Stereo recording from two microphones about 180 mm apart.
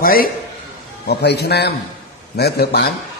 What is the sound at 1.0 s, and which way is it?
A man's voice, 65° left (ahead or behind).